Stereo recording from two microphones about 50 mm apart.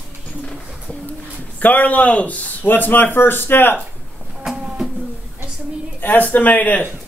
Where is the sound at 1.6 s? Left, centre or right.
Left.